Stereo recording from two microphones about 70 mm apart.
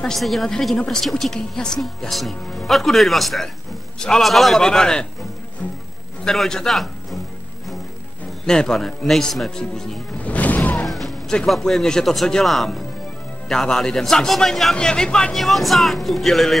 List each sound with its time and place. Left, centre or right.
0.0 s a woman's voice: centre
6.2 s a man's voice: centre
8.5 s a woman's voice: centre
10.2 s music: left
10.9 s a man's voice: centre
15.3 s a woman's voice: centre